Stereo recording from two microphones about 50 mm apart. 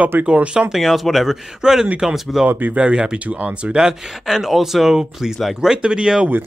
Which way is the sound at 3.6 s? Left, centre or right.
Centre.